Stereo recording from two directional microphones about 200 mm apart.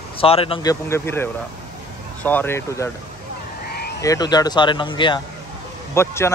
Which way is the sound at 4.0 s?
20° left (ahead or behind).